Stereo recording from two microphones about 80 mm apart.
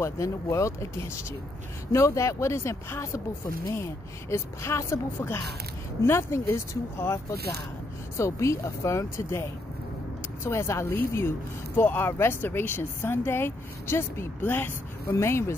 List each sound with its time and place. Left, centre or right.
0.0 s speech: left
8.2 s speech: left